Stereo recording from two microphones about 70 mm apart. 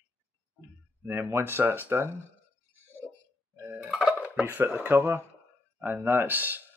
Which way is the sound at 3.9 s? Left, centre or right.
Centre.